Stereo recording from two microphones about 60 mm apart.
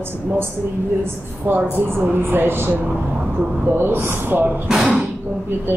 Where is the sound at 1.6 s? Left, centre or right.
Right.